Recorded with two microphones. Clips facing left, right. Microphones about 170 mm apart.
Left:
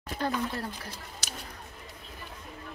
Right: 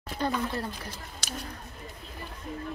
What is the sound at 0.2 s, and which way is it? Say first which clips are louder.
Speech: right 1 dB; 5° left (ahead or behind).